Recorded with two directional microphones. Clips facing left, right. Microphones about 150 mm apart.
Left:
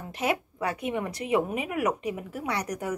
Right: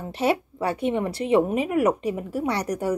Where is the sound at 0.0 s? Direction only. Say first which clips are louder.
Right 5 dB; 30° right (ahead or behind).